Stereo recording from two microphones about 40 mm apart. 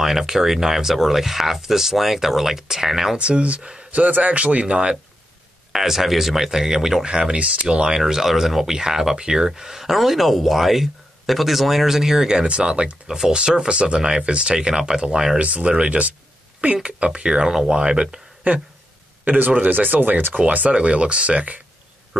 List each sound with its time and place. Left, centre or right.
0.0 s speech: centre
3.2 s speech: right
5.7 s speech: centre
8.0 s speech: centre
12.4 s speech: right
15.3 s speech: right
18.4 s speech: right
20.3 s speech: right